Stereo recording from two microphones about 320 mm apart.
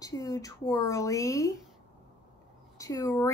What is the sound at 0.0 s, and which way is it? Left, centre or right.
A woman's voice, centre.